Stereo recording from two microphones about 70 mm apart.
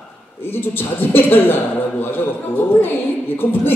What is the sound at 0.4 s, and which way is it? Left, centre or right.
A man's voice, left.